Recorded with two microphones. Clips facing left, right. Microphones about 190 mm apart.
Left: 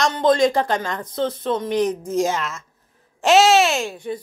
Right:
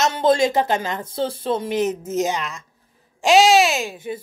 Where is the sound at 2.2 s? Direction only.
Centre (ahead or behind).